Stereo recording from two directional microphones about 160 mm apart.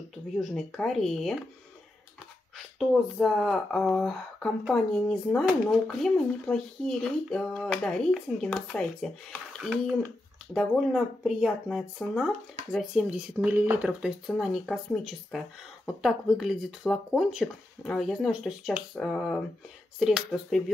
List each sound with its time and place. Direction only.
0.4 s speech: 5° left (ahead or behind)
2.5 s speech: centre (ahead or behind)